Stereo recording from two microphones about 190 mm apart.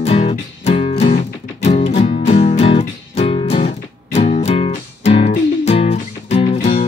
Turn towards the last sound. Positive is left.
turn(degrees=40)  # may be behind; listen again after turning